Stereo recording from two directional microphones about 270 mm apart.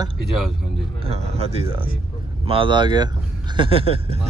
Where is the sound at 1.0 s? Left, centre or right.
Right.